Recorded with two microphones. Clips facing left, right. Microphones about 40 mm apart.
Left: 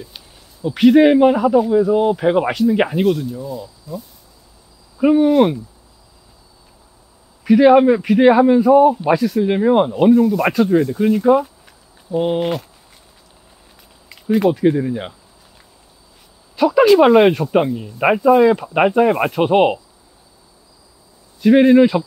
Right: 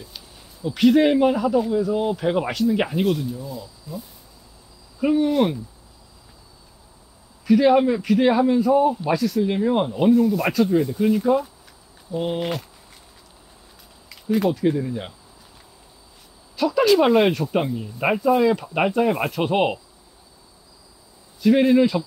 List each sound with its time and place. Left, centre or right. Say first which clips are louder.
0.6 s speech: left 5 dB; centre
4.9 s speech: left 7 dB; centre
7.4 s a man's voice: left 6 dB; left
14.3 s speech: left 5 dB; centre
16.5 s speech: left 6 dB; centre
21.5 s speech: left 7 dB; centre